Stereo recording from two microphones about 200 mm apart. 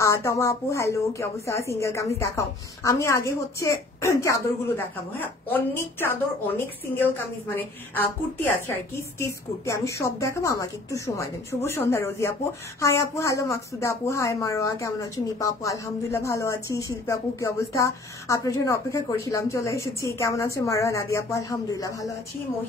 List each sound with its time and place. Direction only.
0.0 s speech: 15° left (ahead or behind)